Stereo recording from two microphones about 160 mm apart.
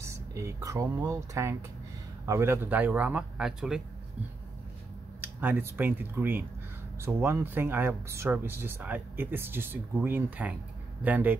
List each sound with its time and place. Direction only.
0.0 s speech: 20° right (ahead or behind); by 3.8 s 5° right (ahead or behind)
5.2 s speech: 10° right (ahead or behind)